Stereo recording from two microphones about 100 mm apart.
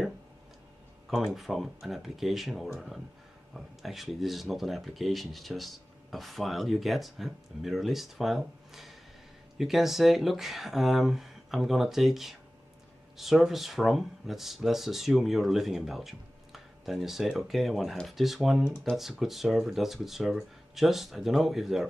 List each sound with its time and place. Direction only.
1.1 s speech: centre (ahead or behind)